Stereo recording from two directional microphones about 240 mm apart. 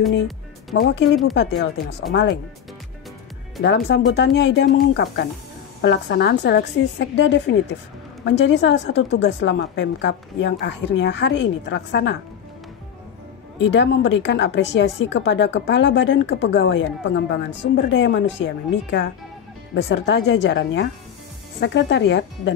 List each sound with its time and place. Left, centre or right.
0.7 s a woman's voice: left
3.6 s a woman's voice: left
13.6 s a woman's voice: left